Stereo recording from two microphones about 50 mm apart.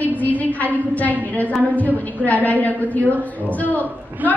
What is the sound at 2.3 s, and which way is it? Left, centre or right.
A woman's voice, left.